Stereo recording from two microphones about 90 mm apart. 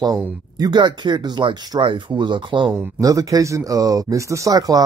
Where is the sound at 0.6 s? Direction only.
50° right (ahead or behind).